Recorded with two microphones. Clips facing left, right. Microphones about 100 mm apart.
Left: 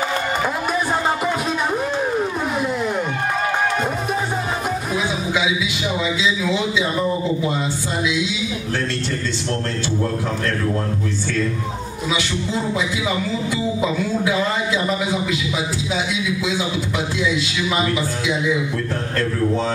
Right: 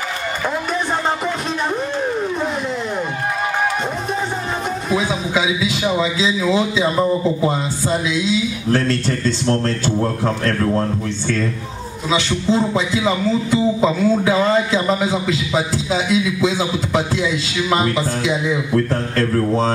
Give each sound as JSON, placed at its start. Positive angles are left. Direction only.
{"t": 6.2, "sound": "a man's voice", "side_deg": -35}
{"t": 8.1, "sound": "a man's voice", "side_deg": -35}
{"t": 12.1, "sound": "a man's voice", "side_deg": -30}
{"t": 19.3, "sound": "a man's voice", "side_deg": -35}